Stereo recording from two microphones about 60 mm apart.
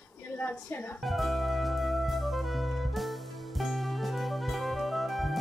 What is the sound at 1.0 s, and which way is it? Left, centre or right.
Music, centre.